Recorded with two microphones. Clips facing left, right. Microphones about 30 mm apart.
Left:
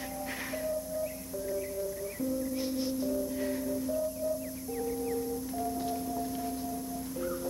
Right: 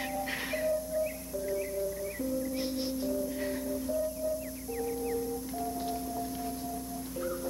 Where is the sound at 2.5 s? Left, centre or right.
Centre.